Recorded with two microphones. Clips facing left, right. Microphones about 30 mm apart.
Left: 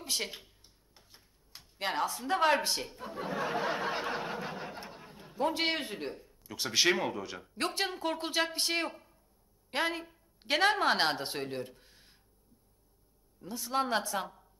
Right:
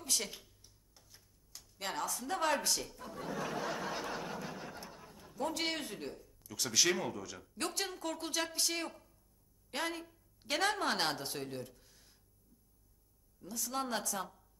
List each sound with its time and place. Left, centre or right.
0.0 s a woman's voice: left
13.4 s speech: left